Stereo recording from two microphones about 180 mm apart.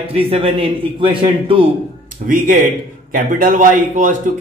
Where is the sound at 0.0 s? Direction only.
30° right (ahead or behind).